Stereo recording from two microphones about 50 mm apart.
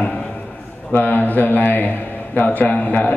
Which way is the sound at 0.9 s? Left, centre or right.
Left.